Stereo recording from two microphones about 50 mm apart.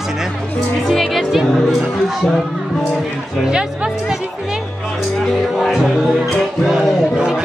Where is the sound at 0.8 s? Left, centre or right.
Centre.